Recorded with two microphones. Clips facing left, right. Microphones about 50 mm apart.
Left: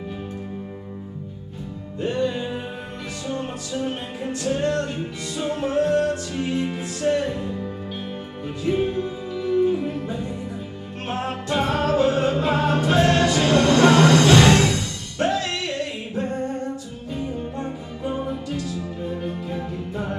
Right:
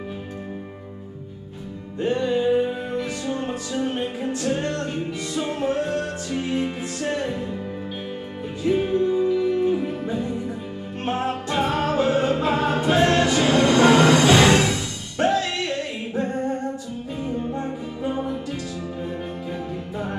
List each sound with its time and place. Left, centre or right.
2.1 s music: centre
5.3 s music: centre
8.6 s music: centre
11.4 s music: centre
15.1 s music: right
19.0 s music: centre